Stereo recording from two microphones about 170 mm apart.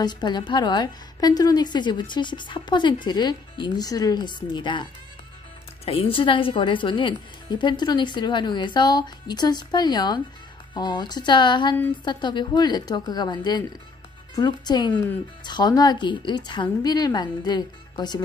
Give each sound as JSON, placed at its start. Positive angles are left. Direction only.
{"t": 0.0, "sound": "a woman's voice", "side_deg": 25}
{"t": 5.9, "sound": "a woman's voice", "side_deg": 35}